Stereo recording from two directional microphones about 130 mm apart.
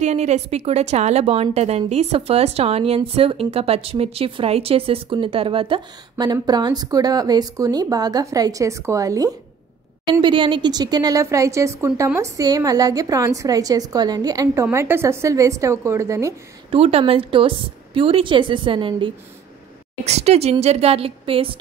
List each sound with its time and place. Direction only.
0.0 s a woman's voice: 60° right (ahead or behind); by 9.3 s 25° right (ahead or behind)
10.2 s a woman's voice: 40° right (ahead or behind); by 16.3 s 25° right (ahead or behind)
16.7 s a woman's voice: 50° right (ahead or behind)
20.1 s a woman's voice: 55° right (ahead or behind)